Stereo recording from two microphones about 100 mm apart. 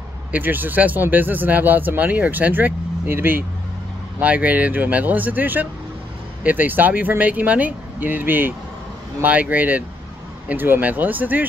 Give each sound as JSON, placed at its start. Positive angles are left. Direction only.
{"t": 0.3, "sound": "speech", "side_deg": -20}